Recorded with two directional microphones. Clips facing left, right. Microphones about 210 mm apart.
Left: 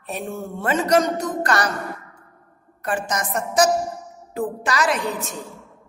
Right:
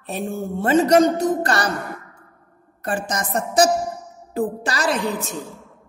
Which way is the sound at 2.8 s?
30° right (ahead or behind).